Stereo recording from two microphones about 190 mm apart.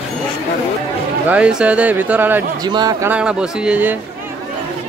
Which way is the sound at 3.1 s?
5° right (ahead or behind).